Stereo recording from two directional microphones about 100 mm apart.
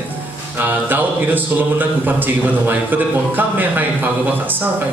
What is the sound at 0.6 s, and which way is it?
Speech, 20° right (ahead or behind).